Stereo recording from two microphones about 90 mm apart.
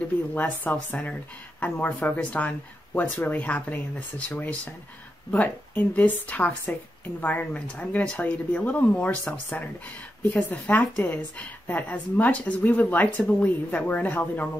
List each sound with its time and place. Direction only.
0.3 s a woman's voice: 20° left (ahead or behind)